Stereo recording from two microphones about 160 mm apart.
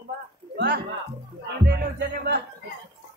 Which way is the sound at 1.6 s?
90° right.